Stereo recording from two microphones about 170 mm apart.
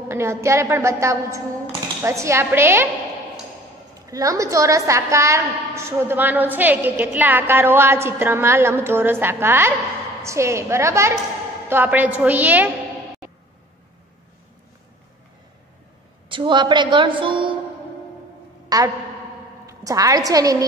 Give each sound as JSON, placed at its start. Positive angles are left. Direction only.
{"t": 0.1, "sound": "a woman's voice", "side_deg": -15}
{"t": 4.0, "sound": "a woman's voice", "side_deg": -20}
{"t": 16.3, "sound": "a woman's voice", "side_deg": -30}
{"t": 18.7, "sound": "a woman's voice", "side_deg": -20}